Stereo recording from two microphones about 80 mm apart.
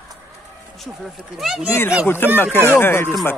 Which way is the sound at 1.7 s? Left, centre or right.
Left.